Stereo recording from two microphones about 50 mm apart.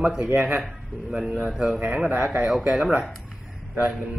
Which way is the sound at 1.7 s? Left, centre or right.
Right.